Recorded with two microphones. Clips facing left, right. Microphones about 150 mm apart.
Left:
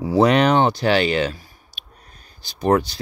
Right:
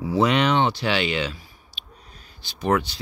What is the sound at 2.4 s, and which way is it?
Speech, 40° left (ahead or behind).